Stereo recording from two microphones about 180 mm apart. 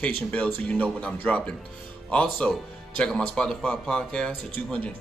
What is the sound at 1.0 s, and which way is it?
Speech, 5° left (ahead or behind).